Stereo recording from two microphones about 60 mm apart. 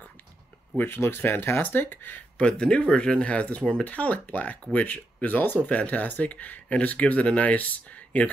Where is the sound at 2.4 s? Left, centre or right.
Centre.